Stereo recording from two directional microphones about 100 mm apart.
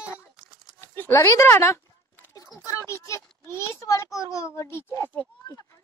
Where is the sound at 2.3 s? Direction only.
35° left (ahead or behind).